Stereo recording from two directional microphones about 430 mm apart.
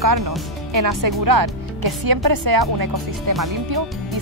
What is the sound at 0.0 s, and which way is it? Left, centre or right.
Speech, right.